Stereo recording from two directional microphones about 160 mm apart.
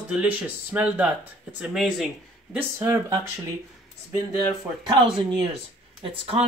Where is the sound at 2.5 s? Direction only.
15° right (ahead or behind).